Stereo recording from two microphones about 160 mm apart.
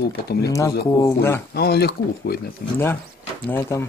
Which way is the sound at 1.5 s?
80° left.